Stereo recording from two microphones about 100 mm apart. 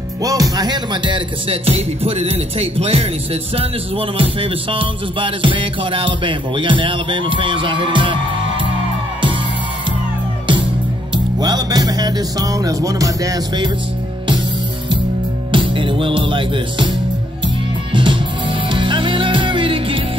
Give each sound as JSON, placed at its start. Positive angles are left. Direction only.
{"t": 0.2, "sound": "music", "side_deg": -35}
{"t": 4.2, "sound": "music", "side_deg": -60}
{"t": 11.3, "sound": "music", "side_deg": -45}
{"t": 15.5, "sound": "music", "side_deg": -60}
{"t": 17.9, "sound": "music", "side_deg": -55}